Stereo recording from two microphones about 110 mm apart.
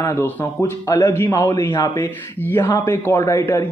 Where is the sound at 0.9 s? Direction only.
30° left (ahead or behind).